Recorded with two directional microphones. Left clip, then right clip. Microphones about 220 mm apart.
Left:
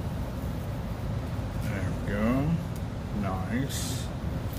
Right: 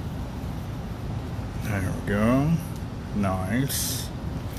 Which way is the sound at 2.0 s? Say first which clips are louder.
Right 5 dB; 45° right (ahead or behind).